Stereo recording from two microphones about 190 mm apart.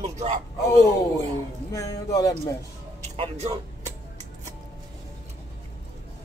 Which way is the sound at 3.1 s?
30° right (ahead or behind).